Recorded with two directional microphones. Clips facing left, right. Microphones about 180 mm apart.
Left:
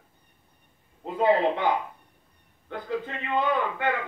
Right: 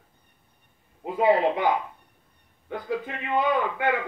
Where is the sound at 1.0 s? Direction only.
10° right (ahead or behind).